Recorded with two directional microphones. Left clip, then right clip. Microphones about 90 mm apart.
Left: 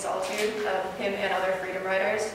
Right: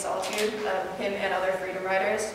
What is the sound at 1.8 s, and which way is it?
Speech, 20° right (ahead or behind).